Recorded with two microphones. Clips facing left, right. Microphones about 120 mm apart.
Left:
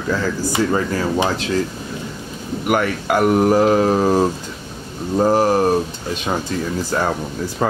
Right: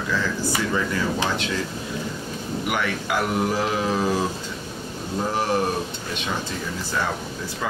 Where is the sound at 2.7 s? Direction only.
50° left (ahead or behind).